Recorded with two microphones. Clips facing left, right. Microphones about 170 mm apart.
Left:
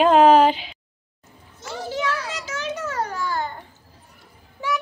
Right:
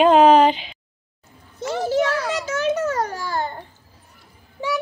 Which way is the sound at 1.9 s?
45° right (ahead or behind).